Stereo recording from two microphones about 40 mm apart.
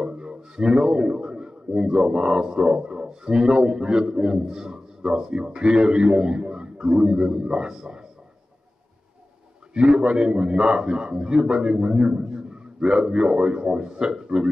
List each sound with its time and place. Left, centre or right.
0.0 s a man's voice: right
9.8 s a man's voice: right